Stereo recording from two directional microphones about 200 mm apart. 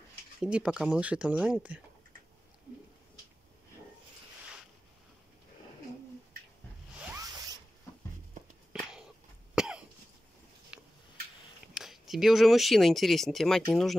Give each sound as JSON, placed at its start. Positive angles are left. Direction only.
{"t": 0.4, "sound": "speech", "side_deg": -5}
{"t": 7.2, "sound": "zipper", "side_deg": -15}
{"t": 8.7, "sound": "a sound", "side_deg": -5}
{"t": 9.6, "sound": "cough", "side_deg": -5}
{"t": 10.7, "sound": "tick-tock", "side_deg": -5}
{"t": 11.7, "sound": "speech", "side_deg": 0}